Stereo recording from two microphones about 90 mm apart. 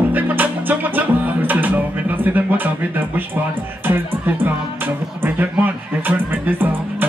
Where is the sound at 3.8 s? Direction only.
25° right (ahead or behind).